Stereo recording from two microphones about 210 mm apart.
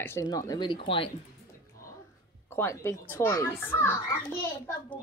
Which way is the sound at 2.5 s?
10° left (ahead or behind).